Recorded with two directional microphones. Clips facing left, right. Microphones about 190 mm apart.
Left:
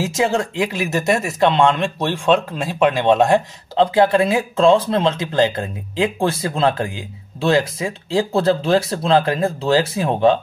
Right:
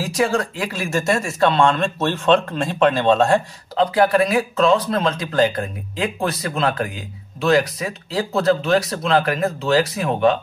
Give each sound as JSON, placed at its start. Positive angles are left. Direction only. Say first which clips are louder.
{"t": 0.0, "sound": "speech", "louder": "left 1 dB", "side_deg": 25}